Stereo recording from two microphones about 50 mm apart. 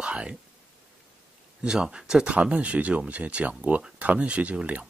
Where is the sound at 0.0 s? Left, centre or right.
Right.